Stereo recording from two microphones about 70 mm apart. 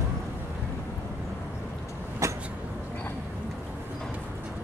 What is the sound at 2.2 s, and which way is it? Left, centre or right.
Vehicle, right.